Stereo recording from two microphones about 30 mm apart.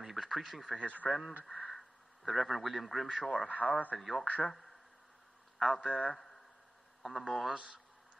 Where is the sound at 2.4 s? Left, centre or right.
Centre.